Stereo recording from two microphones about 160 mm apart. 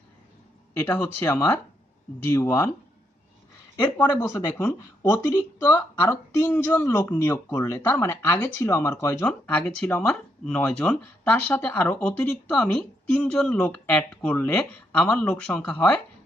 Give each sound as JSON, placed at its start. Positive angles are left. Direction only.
{"t": 0.7, "sound": "speech", "side_deg": 15}
{"t": 4.2, "sound": "speech", "side_deg": 15}